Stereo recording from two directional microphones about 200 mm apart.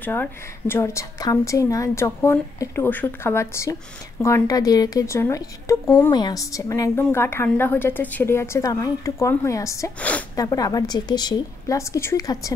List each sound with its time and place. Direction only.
0.0 s a woman's voice: 10° left (ahead or behind)